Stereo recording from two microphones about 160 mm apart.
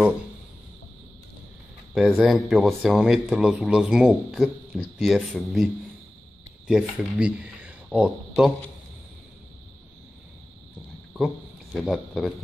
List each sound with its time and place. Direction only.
2.0 s speech: centre (ahead or behind)
6.7 s speech: 5° right (ahead or behind)
11.1 s speech: centre (ahead or behind)